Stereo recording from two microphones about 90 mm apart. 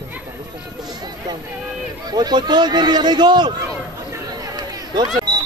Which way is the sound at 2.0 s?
50° right (ahead or behind).